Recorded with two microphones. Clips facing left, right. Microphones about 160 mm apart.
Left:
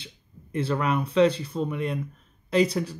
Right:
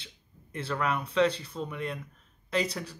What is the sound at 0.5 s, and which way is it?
Speech, 20° left (ahead or behind).